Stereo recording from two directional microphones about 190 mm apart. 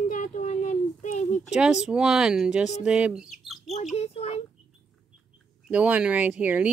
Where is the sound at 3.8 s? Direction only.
35° left (ahead or behind).